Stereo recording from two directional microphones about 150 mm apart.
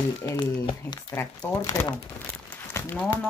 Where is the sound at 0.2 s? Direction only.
25° left (ahead or behind).